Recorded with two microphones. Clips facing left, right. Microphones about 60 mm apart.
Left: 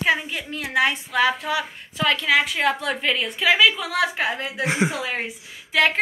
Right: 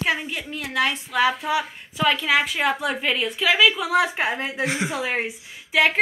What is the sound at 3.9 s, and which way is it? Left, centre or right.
Speech, right.